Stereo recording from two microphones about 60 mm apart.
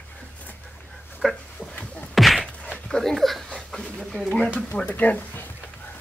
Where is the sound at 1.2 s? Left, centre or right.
Centre.